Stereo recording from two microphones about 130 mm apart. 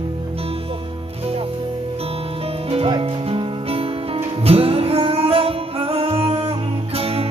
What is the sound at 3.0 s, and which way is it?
Music, 45° right (ahead or behind).